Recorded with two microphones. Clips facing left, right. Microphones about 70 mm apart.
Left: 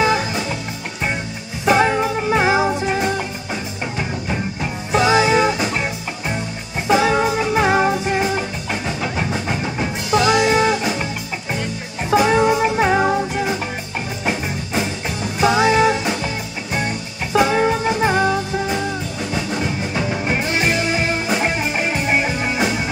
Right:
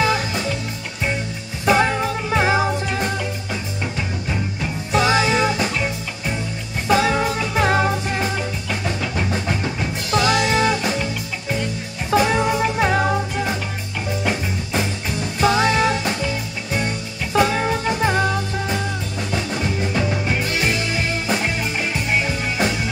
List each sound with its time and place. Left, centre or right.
0.0 s music: centre
1.7 s music: centre
4.9 s music: centre
6.9 s music: centre
10.1 s music: centre
12.1 s music: centre
15.4 s music: centre
17.3 s music: centre
20.2 s music: left